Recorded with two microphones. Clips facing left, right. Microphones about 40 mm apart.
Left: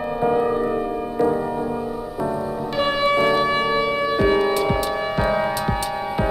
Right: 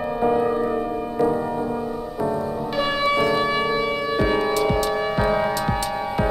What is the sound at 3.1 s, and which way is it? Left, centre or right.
Music, left.